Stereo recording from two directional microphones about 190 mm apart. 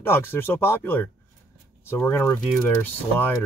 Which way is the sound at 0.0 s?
10° left (ahead or behind).